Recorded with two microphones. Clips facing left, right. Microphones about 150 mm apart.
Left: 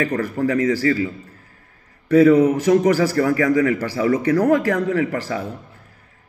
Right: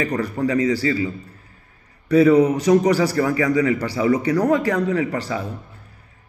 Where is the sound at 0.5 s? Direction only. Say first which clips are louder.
Left 1 dB; 55° left (ahead or behind).